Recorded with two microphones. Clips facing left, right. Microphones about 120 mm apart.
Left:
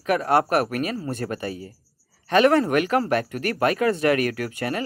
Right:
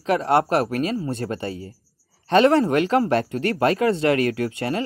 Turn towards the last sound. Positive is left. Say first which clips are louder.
# right 3 dB
turn(degrees=-25)  # may be behind; listen again after turning